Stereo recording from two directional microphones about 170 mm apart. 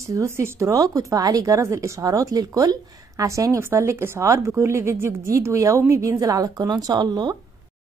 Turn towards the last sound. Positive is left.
turn(degrees=-25)  # may be behind; listen again after turning